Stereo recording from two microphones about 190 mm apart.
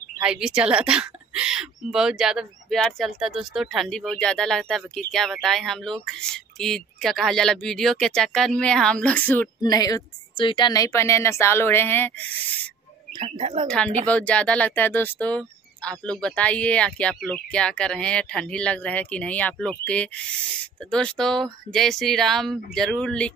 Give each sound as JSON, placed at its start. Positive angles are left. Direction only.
{"t": 0.2, "sound": "a woman's voice", "side_deg": -5}
{"t": 9.6, "sound": "speech", "side_deg": 20}
{"t": 13.1, "sound": "speech", "side_deg": -30}
{"t": 13.7, "sound": "a woman's voice", "side_deg": 5}
{"t": 20.9, "sound": "a woman's voice", "side_deg": 5}